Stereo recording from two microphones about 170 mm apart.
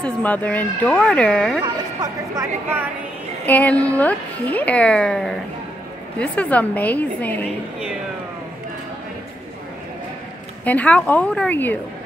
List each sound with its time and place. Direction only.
0.0 s a woman's voice: 10° left (ahead or behind)
1.6 s speech: 20° right (ahead or behind)
3.4 s a woman's voice: 10° left (ahead or behind)
10.6 s a woman's voice: 10° left (ahead or behind)